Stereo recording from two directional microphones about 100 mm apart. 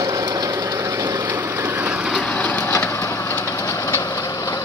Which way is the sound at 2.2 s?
15° left (ahead or behind).